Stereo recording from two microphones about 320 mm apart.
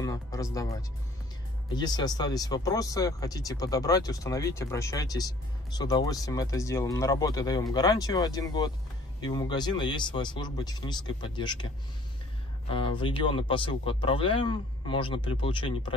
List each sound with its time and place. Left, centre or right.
0.0 s music: centre
1.8 s speech: centre
12.6 s speech: centre